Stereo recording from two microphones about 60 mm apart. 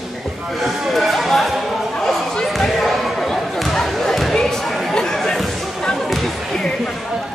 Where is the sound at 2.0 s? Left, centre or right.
Centre.